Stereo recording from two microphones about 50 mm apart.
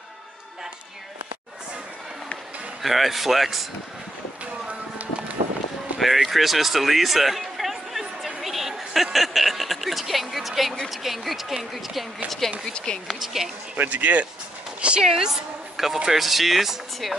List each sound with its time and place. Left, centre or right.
2.8 s speech: centre
4.6 s a sound: right
5.9 s speech: centre
12.7 s speech: centre
13.1 s speech: centre
13.7 s speech: right
15.0 s speech: centre